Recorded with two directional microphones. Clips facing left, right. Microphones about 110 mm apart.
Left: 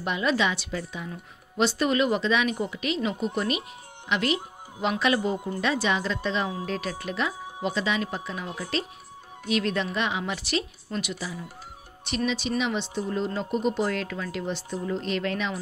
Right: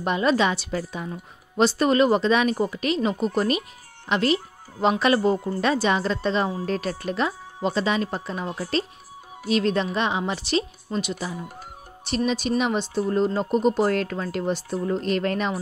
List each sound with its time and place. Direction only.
0.0 s speech: 40° right (ahead or behind)
11.1 s speech: 50° right (ahead or behind)